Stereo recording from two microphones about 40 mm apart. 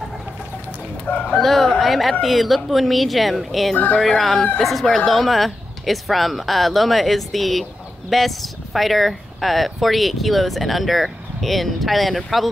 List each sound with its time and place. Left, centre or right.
1.1 s speech: left
1.4 s speech: centre
3.7 s speech: left
4.2 s speech: centre